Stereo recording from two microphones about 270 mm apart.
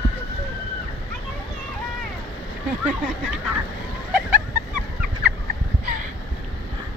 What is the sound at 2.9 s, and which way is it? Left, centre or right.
Speech, centre.